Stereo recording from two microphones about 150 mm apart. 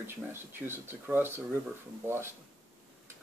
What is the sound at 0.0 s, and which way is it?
Speech, 15° right (ahead or behind).